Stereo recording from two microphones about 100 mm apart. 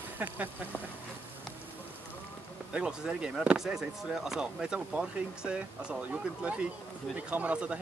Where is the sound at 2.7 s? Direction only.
10° right (ahead or behind).